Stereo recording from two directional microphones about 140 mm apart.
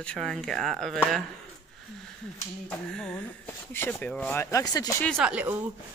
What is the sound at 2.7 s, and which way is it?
Speech, 5° left (ahead or behind).